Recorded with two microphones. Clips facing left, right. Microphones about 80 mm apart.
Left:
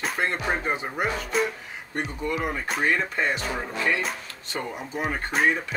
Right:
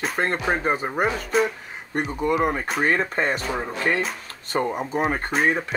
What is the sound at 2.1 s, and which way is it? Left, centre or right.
Speech, right.